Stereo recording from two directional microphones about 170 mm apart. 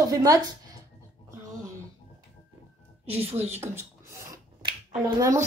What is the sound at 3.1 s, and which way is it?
Speech, 10° right (ahead or behind).